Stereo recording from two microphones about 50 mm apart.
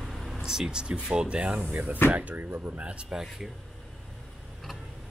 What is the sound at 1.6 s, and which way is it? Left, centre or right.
Speech, right.